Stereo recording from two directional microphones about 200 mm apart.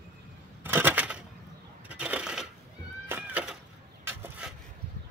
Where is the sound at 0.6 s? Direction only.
10° right (ahead or behind).